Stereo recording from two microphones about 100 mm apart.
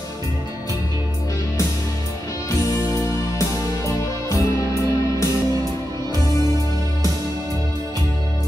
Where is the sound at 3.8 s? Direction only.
35° left (ahead or behind).